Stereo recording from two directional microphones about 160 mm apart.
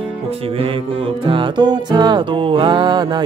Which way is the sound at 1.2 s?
30° right (ahead or behind).